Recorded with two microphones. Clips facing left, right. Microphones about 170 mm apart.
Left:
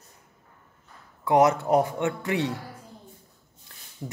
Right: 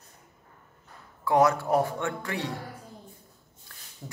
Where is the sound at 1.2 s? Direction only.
20° left (ahead or behind).